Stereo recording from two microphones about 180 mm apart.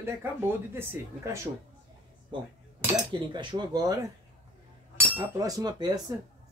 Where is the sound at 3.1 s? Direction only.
25° right (ahead or behind).